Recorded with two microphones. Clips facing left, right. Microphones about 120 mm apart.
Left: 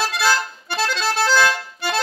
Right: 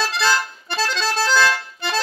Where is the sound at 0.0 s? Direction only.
5° left (ahead or behind).